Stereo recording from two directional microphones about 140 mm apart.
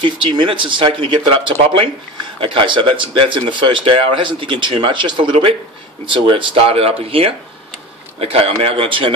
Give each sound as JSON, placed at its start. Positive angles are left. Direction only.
{"t": 0.0, "sound": "speech", "side_deg": -35}